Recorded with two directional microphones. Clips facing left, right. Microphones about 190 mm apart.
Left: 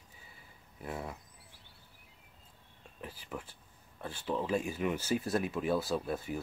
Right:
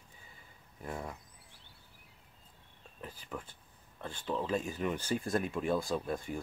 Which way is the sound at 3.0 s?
10° left (ahead or behind).